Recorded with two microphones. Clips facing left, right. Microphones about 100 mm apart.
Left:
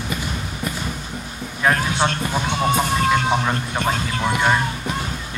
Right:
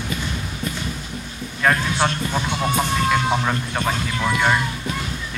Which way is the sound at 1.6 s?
5° left (ahead or behind).